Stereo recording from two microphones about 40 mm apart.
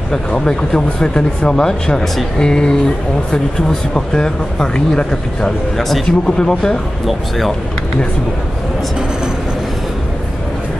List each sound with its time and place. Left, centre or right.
0.1 s speech: centre
5.8 s speech: centre
6.0 s speech: left
7.1 s speech: centre